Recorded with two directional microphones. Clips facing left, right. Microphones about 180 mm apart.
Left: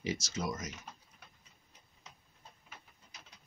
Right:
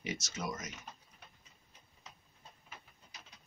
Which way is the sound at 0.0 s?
35° left (ahead or behind).